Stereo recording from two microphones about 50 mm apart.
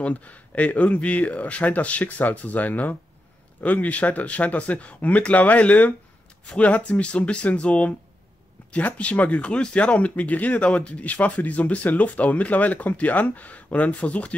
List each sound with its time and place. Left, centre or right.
0.0 s speech: left